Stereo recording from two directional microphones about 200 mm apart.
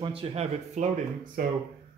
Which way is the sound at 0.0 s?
30° right (ahead or behind).